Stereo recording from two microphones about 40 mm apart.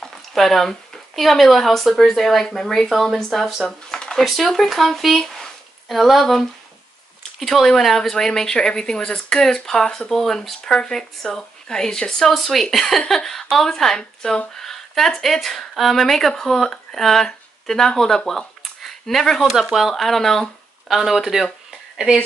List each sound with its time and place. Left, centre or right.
0.3 s speech: centre
2.9 s a woman's voice: centre
18.6 s a sound: centre
19.6 s speech: centre
20.9 s speech: centre